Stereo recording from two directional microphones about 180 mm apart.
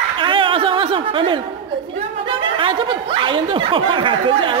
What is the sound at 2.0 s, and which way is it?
Speech, 30° right (ahead or behind).